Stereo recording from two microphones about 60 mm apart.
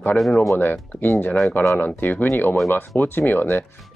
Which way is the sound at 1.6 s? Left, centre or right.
Left.